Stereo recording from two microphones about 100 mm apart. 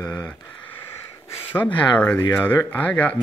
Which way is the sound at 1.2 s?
20° left (ahead or behind).